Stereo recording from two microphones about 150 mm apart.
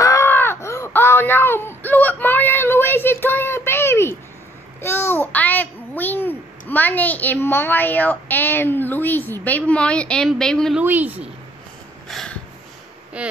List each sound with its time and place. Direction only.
0.0 s wail: 20° left (ahead or behind)
4.8 s a child's voice: 15° left (ahead or behind)
10.8 s speech: 10° right (ahead or behind)
12.1 s a sound: 5° left (ahead or behind)
13.2 s speech: 10° right (ahead or behind)